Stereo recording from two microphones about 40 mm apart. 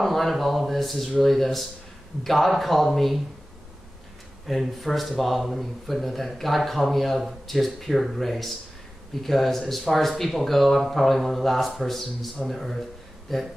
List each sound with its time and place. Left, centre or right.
0.0 s speech: centre
4.5 s speech: centre